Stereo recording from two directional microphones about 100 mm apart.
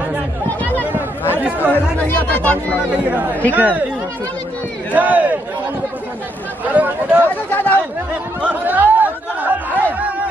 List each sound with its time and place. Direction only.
0.9 s chatter: 20° right (ahead or behind)
1.7 s speech: 15° left (ahead or behind)
3.5 s speech: 15° right (ahead or behind)
4.9 s speech: 15° right (ahead or behind)
6.6 s speech: 15° right (ahead or behind)
7.5 s speech: 15° left (ahead or behind)
8.1 s chatter: 15° right (ahead or behind)